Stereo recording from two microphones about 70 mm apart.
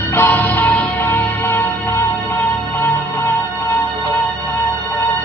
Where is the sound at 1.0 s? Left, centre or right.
Left.